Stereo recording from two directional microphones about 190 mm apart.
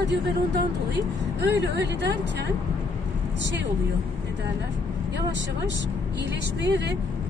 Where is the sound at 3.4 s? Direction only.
75° right (ahead or behind).